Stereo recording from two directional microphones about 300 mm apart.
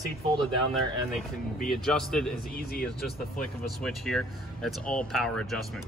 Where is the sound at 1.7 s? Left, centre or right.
Centre.